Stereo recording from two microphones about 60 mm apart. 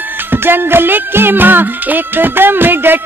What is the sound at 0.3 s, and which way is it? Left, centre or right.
Music, right.